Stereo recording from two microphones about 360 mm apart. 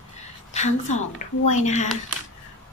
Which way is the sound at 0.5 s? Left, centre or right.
Centre.